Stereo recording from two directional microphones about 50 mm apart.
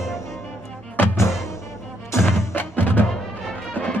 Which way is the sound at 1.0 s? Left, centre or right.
Left.